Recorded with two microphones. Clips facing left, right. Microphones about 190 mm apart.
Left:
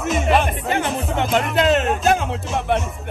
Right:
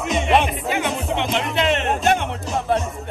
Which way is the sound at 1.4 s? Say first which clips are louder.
Left 3 dB; centre (ahead or behind).